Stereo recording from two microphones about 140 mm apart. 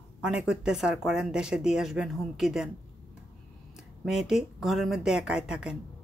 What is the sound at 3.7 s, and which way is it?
Speech, 5° right (ahead or behind).